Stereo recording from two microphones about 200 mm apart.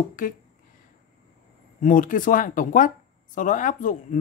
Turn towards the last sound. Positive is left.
turn(degrees=40)  # may be behind; listen again after turning